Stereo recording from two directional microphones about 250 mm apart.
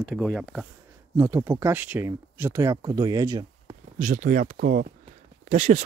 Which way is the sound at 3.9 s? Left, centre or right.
Right.